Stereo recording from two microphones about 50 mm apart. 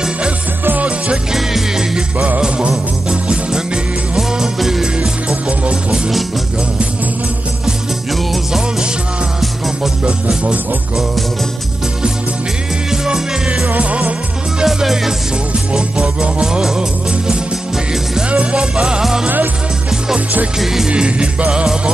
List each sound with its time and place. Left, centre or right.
0.8 s music: right
1.3 s music: centre
4.9 s music: right
12.9 s music: centre
13.7 s music: right
14.6 s music: centre
15.7 s music: centre
18.3 s music: right
19.2 s music: right
20.5 s music: centre
20.9 s music: right